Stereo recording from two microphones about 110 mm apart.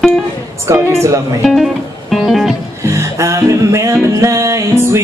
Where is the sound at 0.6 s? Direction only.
25° right (ahead or behind).